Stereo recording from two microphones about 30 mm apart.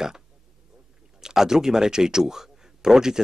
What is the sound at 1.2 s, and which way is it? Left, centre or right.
Speech, centre.